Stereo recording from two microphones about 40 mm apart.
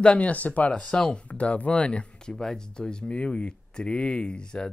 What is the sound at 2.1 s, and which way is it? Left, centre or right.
Speech, centre.